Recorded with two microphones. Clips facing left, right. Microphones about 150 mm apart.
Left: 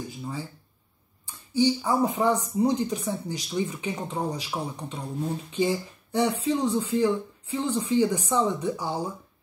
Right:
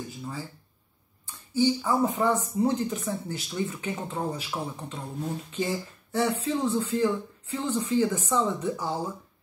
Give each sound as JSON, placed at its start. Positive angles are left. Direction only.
{"t": 0.2, "sound": "speech", "side_deg": 15}